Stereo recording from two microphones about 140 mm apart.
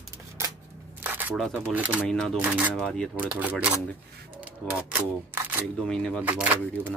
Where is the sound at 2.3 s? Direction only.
10° right (ahead or behind).